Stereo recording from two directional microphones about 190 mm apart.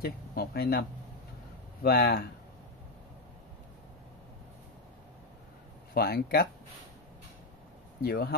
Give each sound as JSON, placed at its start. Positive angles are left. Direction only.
{"t": 0.0, "sound": "speech", "side_deg": 55}
{"t": 5.9, "sound": "speech", "side_deg": 55}
{"t": 8.0, "sound": "speech", "side_deg": 55}